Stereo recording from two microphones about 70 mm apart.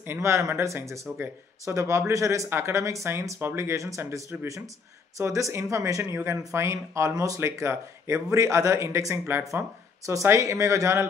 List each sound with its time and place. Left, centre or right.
0.0 s speech: right
1.1 s speech: right
1.8 s speech: right
5.2 s speech: right
5.8 s speech: right